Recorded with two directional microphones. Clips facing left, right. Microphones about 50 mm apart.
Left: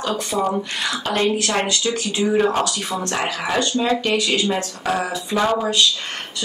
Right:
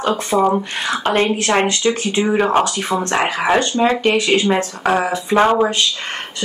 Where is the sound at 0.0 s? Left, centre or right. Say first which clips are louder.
Right 6 dB; right.